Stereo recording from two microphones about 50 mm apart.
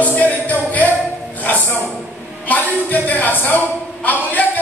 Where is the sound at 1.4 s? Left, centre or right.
Left.